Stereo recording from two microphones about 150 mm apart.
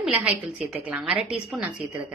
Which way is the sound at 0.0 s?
5° right (ahead or behind).